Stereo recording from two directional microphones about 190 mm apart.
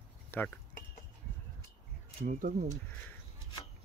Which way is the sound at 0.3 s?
10° left (ahead or behind).